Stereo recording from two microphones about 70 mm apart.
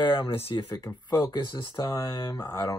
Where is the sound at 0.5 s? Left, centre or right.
Left.